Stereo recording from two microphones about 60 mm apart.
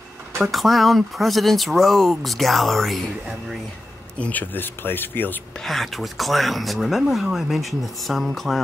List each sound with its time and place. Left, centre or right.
0.4 s speech: centre
4.2 s speech: left
5.7 s speech: centre